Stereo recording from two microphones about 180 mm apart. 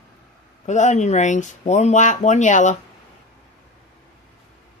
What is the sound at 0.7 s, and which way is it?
Speech, 40° left (ahead or behind).